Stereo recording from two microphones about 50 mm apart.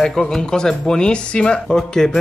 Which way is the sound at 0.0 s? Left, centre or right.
Centre.